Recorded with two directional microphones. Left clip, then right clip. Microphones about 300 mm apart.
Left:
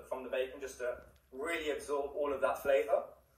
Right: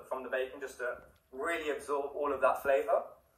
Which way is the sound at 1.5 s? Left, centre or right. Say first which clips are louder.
Right 2 dB; centre.